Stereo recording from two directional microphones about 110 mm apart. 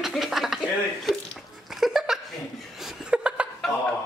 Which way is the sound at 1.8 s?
5° right (ahead or behind).